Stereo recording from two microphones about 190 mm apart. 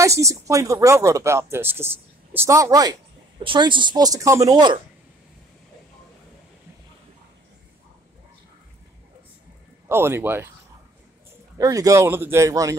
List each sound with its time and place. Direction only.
0.0 s speech: 15° right (ahead or behind)
9.8 s speech: 15° right (ahead or behind)
11.5 s speech: 20° right (ahead or behind)